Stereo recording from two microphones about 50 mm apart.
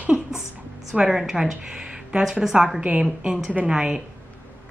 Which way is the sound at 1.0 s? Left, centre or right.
Centre.